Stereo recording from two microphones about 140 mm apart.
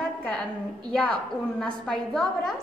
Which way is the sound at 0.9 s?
5° left (ahead or behind).